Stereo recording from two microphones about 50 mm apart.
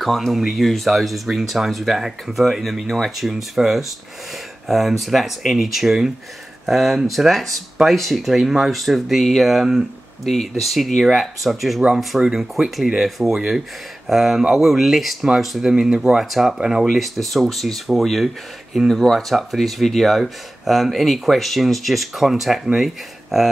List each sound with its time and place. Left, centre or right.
0.0 s speech: centre